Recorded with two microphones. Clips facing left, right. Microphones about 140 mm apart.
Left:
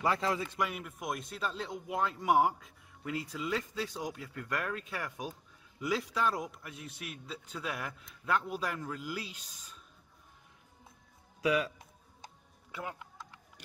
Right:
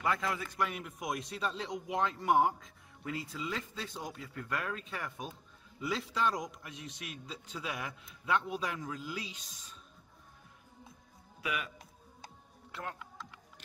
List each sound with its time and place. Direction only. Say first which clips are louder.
0.0 s a man's voice: left 3 dB; 30° left (ahead or behind)
0.6 s a man's voice: even; 5° left (ahead or behind)
11.4 s a man's voice: left 8 dB; 35° left (ahead or behind)